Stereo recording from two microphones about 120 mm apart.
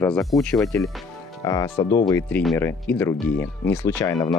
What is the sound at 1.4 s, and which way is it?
Speech, 30° left (ahead or behind).